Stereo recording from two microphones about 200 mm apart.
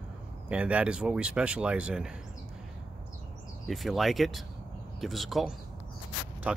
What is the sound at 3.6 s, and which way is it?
Speech, centre (ahead or behind).